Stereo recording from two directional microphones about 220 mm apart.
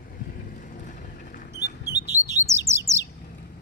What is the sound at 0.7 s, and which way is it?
Mechanisms, 35° left (ahead or behind).